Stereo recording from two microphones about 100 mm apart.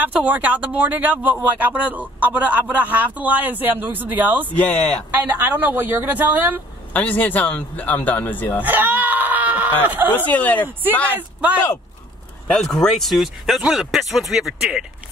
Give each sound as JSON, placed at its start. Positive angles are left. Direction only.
{"t": 0.0, "sound": "a man's voice", "side_deg": -15}
{"t": 4.5, "sound": "a man's voice", "side_deg": 15}
{"t": 5.1, "sound": "speech", "side_deg": -20}
{"t": 6.9, "sound": "a man's voice", "side_deg": 15}
{"t": 8.6, "sound": "screaming", "side_deg": -15}
{"t": 9.8, "sound": "a man's voice", "side_deg": -20}
{"t": 10.1, "sound": "a man's voice", "side_deg": 15}
{"t": 12.5, "sound": "speech", "side_deg": 5}